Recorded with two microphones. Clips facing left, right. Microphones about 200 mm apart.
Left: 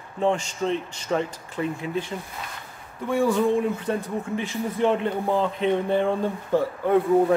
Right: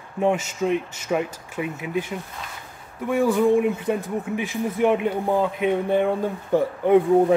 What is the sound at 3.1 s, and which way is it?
Speech, 10° right (ahead or behind).